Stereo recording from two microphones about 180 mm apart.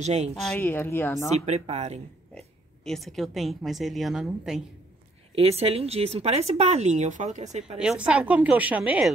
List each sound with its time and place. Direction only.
0.0 s speech: 40° right (ahead or behind)
0.5 s speech: 10° left (ahead or behind)
1.4 s speech: 35° right (ahead or behind)
2.3 s speech: 5° left (ahead or behind)
5.3 s speech: 35° right (ahead or behind)
7.8 s a woman's voice: 5° right (ahead or behind)